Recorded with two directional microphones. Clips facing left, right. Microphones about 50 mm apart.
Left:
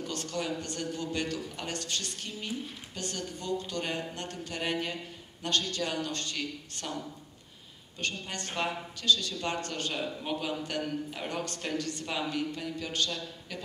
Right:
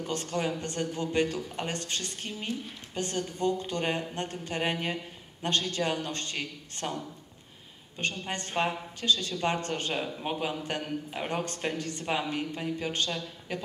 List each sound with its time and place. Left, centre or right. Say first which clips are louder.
0.0 s speech: right 4 dB; right
8.0 s speech: right 3 dB; right